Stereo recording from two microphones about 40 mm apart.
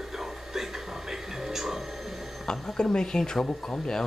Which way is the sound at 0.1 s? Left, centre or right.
Centre.